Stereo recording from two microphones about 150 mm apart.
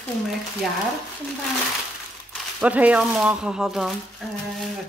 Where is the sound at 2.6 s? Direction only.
10° right (ahead or behind).